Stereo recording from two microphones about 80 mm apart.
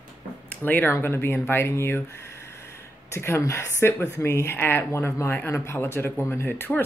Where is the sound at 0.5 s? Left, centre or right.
Left.